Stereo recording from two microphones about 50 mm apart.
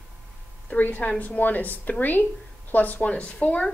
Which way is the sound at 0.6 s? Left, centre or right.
Left.